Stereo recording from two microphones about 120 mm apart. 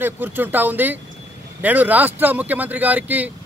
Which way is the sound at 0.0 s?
15° right (ahead or behind).